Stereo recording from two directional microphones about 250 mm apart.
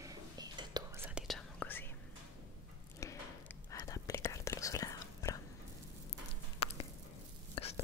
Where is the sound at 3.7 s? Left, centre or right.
Centre.